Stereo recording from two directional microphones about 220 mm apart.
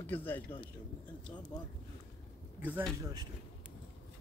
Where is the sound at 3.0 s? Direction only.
20° right (ahead or behind).